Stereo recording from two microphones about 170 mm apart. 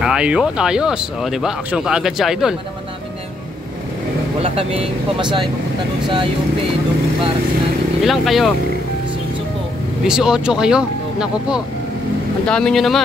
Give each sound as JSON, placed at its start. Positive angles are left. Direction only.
{"t": 0.0, "sound": "speech", "side_deg": -5}
{"t": 4.4, "sound": "speech", "side_deg": -35}
{"t": 8.0, "sound": "speech", "side_deg": 0}
{"t": 10.0, "sound": "speech", "side_deg": -5}